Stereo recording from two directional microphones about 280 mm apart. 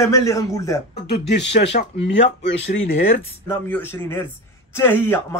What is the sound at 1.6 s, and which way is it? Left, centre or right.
Speech, left.